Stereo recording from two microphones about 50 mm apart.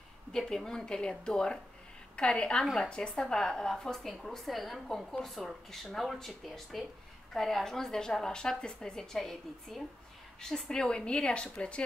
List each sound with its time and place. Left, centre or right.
0.3 s a woman's voice: centre
2.6 s speech: centre
2.9 s a woman's voice: centre